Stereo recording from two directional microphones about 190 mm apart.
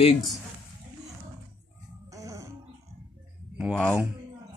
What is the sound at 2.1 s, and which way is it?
Music, 20° right (ahead or behind).